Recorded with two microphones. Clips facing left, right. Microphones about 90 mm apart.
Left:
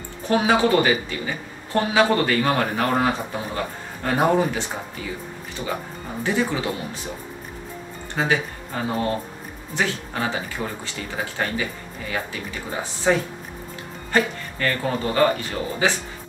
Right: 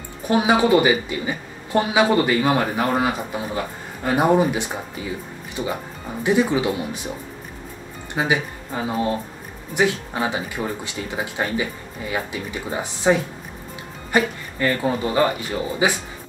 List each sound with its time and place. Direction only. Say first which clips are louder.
0.3 s speech: right 2 dB; 15° right (ahead or behind)
8.1 s speech: right 1 dB; 15° right (ahead or behind)